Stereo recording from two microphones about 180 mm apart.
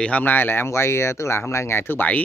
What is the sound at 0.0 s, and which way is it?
Speech, 10° left (ahead or behind).